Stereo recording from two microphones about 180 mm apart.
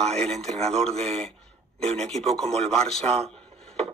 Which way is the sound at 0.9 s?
35° right (ahead or behind).